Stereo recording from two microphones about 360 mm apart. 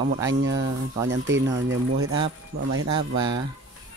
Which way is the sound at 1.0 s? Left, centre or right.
Right.